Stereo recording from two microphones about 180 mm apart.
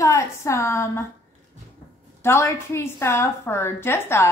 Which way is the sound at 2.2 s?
15° left (ahead or behind).